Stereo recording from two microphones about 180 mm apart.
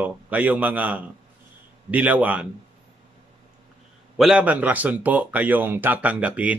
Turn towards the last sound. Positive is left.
turn(degrees=-5)  # may be behind; listen again after turning